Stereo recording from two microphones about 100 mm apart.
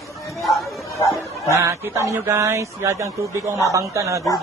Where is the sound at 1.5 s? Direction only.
30° right (ahead or behind).